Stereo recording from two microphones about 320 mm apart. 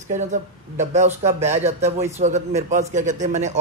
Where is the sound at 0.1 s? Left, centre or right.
Right.